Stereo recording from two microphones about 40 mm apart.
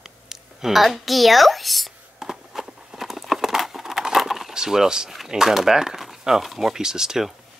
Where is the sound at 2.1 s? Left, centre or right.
Centre.